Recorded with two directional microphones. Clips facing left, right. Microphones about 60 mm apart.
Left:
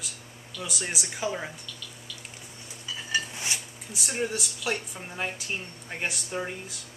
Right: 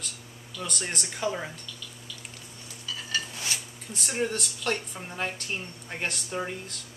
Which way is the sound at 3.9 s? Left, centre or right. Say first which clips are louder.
Right 1 dB; centre.